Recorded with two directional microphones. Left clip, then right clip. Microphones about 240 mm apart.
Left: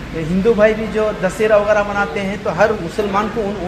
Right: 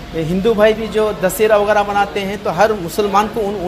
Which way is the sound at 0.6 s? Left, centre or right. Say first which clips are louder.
Right 1 dB; right.